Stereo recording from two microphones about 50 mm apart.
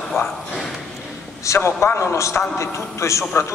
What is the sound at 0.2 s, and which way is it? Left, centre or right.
Speech, left.